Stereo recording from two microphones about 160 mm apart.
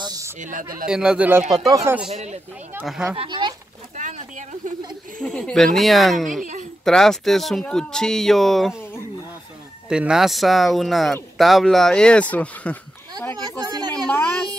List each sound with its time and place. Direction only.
0.0 s a sound: 25° right (ahead or behind)
0.4 s speech: 55° right (ahead or behind)
0.8 s speech: 5° right (ahead or behind)
1.7 s speech: 20° right (ahead or behind)
2.0 s speech: 40° right (ahead or behind)
2.8 s speech: centre (ahead or behind)
3.2 s speech: 30° right (ahead or behind)
3.9 s a sound: 50° right (ahead or behind)
5.2 s speech: 5° left (ahead or behind)
9.8 s speech: 5° right (ahead or behind)
13.7 s a sound: 25° right (ahead or behind)